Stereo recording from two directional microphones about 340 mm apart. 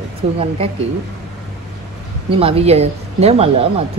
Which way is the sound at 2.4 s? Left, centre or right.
Centre.